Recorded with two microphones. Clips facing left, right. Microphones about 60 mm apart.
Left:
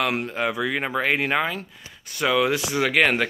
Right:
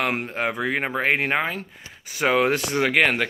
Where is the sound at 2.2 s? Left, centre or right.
Right.